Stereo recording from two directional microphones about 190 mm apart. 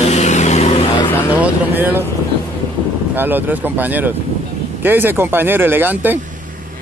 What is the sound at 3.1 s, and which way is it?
Speech, 10° right (ahead or behind).